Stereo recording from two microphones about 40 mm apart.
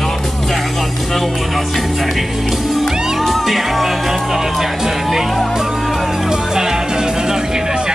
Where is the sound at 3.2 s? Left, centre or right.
Centre.